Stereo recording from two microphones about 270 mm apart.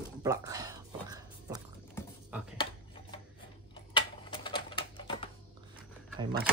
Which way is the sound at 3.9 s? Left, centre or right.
Centre.